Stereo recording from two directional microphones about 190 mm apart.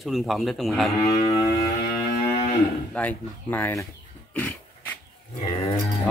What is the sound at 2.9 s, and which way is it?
Speech, 10° left (ahead or behind).